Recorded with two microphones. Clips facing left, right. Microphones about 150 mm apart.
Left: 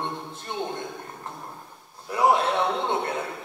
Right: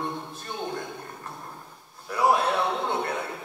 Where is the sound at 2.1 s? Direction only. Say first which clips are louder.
Left 1 dB; 20° left (ahead or behind).